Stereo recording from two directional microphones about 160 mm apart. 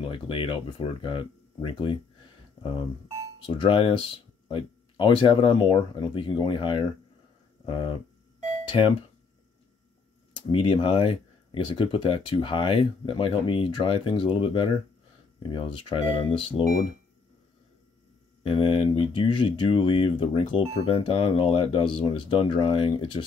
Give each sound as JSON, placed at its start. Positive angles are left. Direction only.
{"t": 0.0, "sound": "speech", "side_deg": 35}
{"t": 3.4, "sound": "speech", "side_deg": 35}
{"t": 10.5, "sound": "speech", "side_deg": 35}
{"t": 18.4, "sound": "speech", "side_deg": 30}